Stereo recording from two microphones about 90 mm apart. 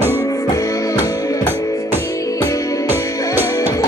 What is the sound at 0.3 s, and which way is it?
Music, 40° left (ahead or behind).